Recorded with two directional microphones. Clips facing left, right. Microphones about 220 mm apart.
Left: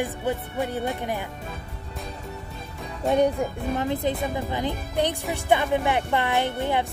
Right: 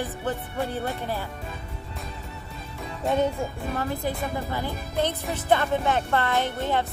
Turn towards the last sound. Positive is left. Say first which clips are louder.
# left 1 dB
turn(degrees=15)  # may be behind; listen again after turning